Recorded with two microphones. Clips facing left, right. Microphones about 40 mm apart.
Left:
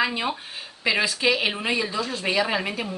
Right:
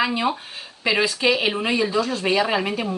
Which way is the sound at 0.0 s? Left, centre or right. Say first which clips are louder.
Right 3 dB; centre.